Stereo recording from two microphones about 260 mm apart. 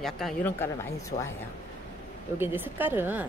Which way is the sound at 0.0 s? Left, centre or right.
Centre.